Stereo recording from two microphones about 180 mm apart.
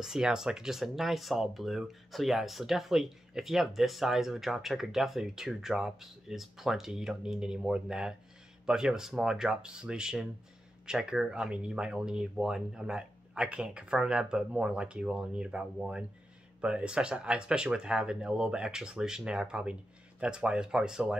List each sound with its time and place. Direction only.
0.0 s speech: 5° right (ahead or behind)